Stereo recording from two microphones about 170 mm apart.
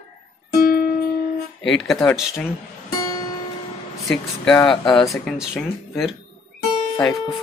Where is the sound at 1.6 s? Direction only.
Centre (ahead or behind).